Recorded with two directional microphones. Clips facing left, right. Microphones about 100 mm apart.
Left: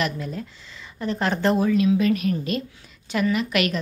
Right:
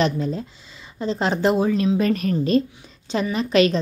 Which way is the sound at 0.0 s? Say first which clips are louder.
Right 5 dB; 30° right (ahead or behind).